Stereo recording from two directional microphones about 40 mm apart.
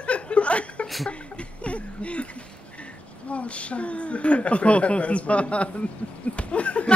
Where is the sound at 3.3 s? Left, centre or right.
Left.